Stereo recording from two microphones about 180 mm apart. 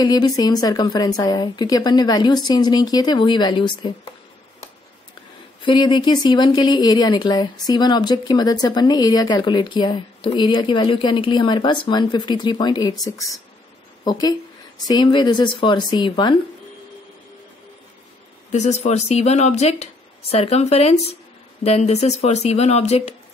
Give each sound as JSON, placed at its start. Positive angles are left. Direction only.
{"t": 0.0, "sound": "a woman's voice", "side_deg": 20}
{"t": 5.6, "sound": "a woman's voice", "side_deg": 25}
{"t": 14.0, "sound": "a woman's voice", "side_deg": 20}
{"t": 18.5, "sound": "speech", "side_deg": 40}